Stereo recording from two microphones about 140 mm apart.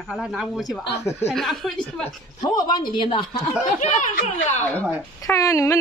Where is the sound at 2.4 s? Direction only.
30° left (ahead or behind).